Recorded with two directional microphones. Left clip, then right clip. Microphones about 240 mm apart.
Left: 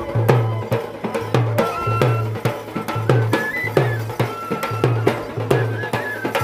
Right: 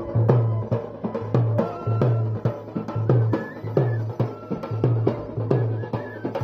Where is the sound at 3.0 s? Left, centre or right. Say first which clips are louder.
Left 6 dB; left.